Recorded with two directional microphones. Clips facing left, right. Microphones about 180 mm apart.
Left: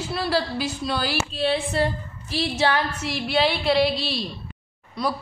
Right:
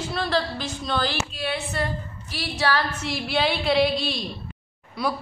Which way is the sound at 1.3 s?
30° left (ahead or behind).